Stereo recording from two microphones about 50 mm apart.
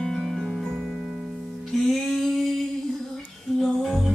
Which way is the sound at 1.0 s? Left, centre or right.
Centre.